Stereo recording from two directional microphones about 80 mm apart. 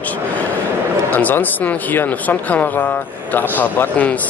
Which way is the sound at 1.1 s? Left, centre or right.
Left.